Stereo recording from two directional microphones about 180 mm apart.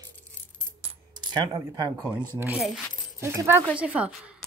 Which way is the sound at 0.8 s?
25° right (ahead or behind).